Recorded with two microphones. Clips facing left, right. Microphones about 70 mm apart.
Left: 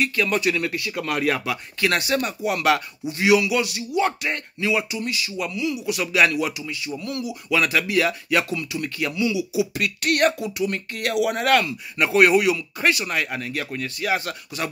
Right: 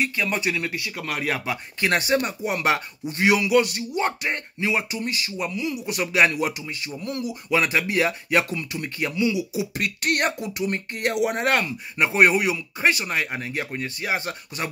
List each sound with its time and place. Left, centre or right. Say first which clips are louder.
0.0 s speech: left 3 dB; right
3.1 s a man's voice: left 1 dB; right
9.8 s speech: left 1 dB; right